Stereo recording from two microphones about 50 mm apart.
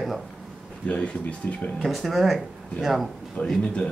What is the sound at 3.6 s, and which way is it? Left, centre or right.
Speech, centre.